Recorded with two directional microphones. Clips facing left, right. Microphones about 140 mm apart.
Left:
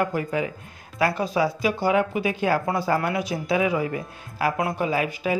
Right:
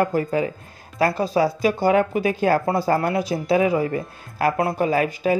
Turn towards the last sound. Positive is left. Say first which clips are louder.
# right 4 dB
turn(degrees=-40)  # may be behind; listen again after turning